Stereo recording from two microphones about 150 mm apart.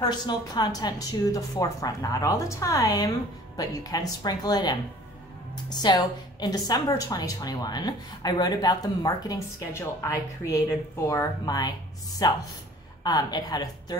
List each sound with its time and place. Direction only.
0.0 s a woman's voice: 30° left (ahead or behind)